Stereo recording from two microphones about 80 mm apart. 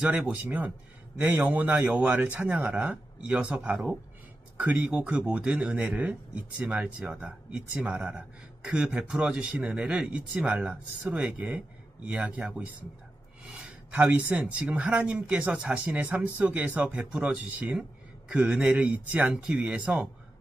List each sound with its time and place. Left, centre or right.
0.0 s speech: centre
13.5 s a sound: centre
14.3 s speech: centre
19.3 s speech: centre